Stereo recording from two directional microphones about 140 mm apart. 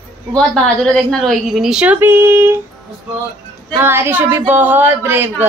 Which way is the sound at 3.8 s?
15° right (ahead or behind).